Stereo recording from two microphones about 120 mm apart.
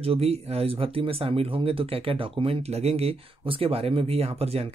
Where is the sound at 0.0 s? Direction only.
55° right (ahead or behind).